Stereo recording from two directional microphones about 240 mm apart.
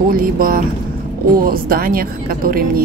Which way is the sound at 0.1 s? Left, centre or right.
Right.